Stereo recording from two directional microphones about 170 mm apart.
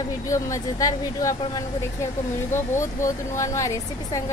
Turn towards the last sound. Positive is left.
turn(degrees=15)  # may be behind; listen again after turning